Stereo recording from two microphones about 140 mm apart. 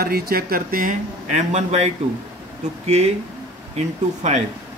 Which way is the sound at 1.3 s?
55° right (ahead or behind).